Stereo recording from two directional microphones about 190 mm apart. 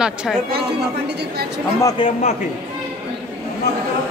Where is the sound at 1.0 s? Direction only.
60° right (ahead or behind).